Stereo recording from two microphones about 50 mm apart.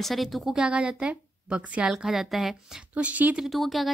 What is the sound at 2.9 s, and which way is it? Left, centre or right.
Speech, right.